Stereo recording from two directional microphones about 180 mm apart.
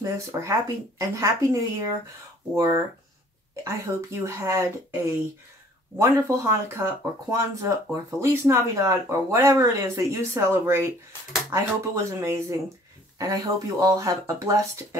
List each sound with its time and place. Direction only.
0.0 s speech: 15° right (ahead or behind)
5.9 s speech: 15° right (ahead or behind)